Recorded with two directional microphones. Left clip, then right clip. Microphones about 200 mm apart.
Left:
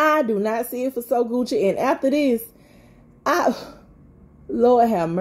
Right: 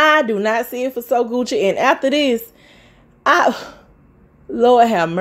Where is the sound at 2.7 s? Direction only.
10° right (ahead or behind).